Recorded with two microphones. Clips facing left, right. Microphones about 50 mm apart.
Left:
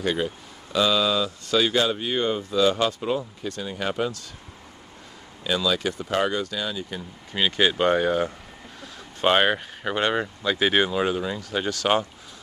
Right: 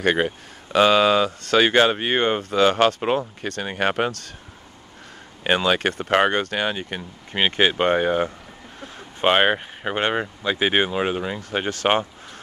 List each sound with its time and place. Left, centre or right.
0.0 s speech: right
5.4 s speech: right
7.3 s speech: right